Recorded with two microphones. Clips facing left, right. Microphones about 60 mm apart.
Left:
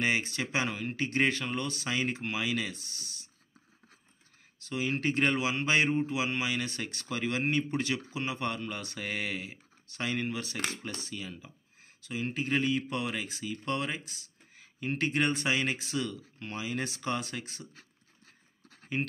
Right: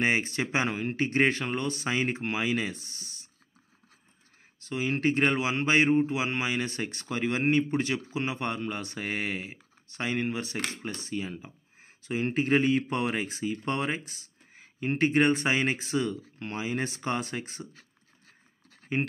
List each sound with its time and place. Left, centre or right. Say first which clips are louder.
0.0 s speech: right 3 dB; right
4.6 s speech: right 4 dB; centre
12.1 s speech: right 6 dB; right
14.5 s a sound: right 4 dB; right
15.3 s speech: right 3 dB; right
18.9 s speech: right 4 dB; right